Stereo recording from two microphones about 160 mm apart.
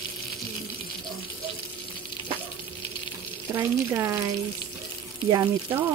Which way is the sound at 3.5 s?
15° right (ahead or behind).